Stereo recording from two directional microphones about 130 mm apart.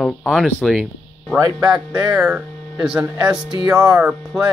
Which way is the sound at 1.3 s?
30° right (ahead or behind).